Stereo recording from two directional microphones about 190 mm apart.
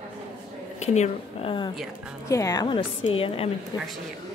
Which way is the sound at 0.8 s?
35° left (ahead or behind).